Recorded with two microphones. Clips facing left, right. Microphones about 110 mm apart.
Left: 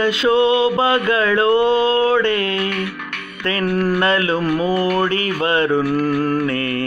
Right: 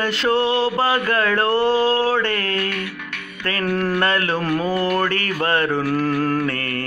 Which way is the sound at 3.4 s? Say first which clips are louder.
Left 4 dB; 25° left (ahead or behind).